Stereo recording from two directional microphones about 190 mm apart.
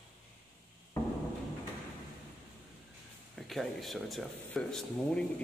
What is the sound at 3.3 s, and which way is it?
Speech, centre (ahead or behind).